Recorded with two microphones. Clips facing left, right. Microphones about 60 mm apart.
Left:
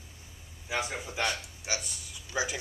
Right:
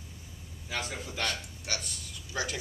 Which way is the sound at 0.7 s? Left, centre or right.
Centre.